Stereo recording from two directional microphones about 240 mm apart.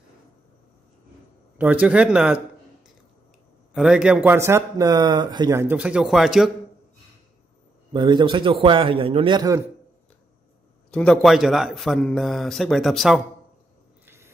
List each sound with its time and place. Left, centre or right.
1.6 s a man's voice: centre
3.7 s speech: centre
7.9 s a man's voice: centre
10.9 s a man's voice: centre
14.0 s a sound: centre